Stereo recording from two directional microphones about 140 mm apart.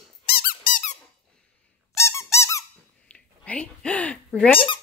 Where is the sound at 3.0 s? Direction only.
10° left (ahead or behind).